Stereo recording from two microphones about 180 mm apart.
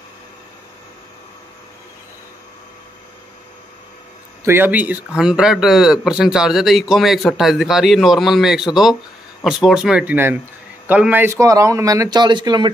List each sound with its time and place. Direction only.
4.5 s a man's voice: 10° right (ahead or behind)